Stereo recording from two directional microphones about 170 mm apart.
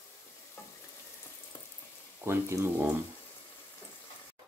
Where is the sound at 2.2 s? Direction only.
15° right (ahead or behind).